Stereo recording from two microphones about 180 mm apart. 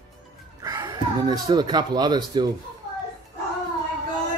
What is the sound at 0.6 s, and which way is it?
Speech, 20° right (ahead or behind).